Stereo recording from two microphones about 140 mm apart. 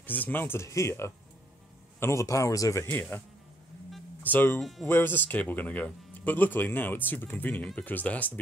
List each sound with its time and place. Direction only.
0.0 s a man's voice: 15° left (ahead or behind)
4.2 s speech: 15° left (ahead or behind)
4.6 s speech: centre (ahead or behind)
4.8 s speech: 15° left (ahead or behind)